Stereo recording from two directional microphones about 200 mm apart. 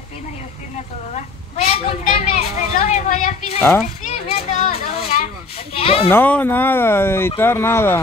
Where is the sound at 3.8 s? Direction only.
35° left (ahead or behind).